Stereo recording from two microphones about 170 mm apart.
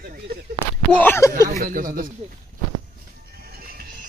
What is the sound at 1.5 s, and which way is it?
Speech, 55° right (ahead or behind).